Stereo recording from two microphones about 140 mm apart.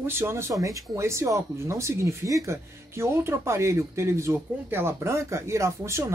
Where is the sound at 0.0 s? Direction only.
15° right (ahead or behind).